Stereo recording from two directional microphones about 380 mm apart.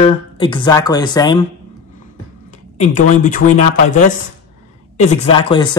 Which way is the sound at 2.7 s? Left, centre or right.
Centre.